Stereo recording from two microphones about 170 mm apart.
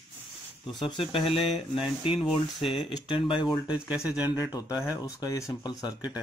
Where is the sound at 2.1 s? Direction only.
Centre (ahead or behind).